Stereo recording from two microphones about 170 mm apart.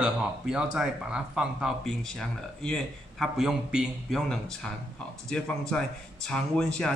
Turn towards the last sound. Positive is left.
turn(degrees=5)  # may be behind; listen again after turning